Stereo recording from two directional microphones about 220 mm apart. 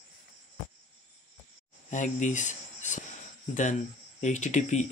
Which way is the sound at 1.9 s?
35° left (ahead or behind).